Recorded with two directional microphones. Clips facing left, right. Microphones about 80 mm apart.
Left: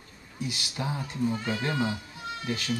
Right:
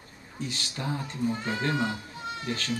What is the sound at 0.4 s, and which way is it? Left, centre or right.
Speech, centre.